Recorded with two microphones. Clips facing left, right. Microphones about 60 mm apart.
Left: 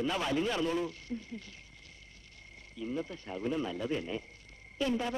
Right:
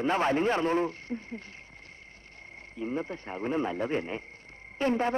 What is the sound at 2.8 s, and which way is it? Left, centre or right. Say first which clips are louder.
Speech: right 4 dB; right.